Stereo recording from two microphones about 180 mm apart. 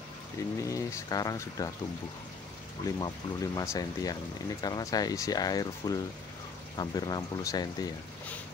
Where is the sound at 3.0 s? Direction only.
20° left (ahead or behind).